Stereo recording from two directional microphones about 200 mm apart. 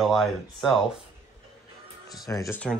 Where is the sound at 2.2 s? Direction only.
15° left (ahead or behind).